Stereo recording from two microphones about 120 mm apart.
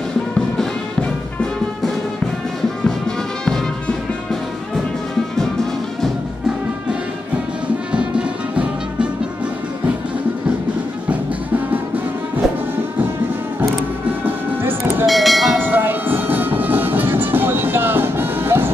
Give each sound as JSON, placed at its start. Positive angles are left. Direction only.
{"t": 3.4, "sound": "music", "side_deg": 5}
{"t": 7.9, "sound": "music", "side_deg": -10}
{"t": 11.1, "sound": "music", "side_deg": -15}
{"t": 14.2, "sound": "vehicle", "side_deg": -20}
{"t": 15.0, "sound": "bell", "side_deg": 0}
{"t": 15.6, "sound": "train", "side_deg": -15}